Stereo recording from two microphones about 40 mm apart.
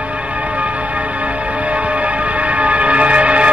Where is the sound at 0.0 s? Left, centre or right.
Right.